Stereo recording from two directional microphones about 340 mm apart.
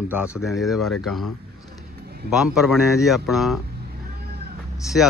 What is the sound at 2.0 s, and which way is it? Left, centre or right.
Vehicle, right.